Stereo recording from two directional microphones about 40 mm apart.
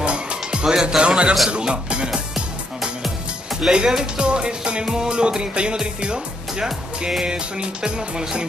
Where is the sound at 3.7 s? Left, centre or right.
Centre.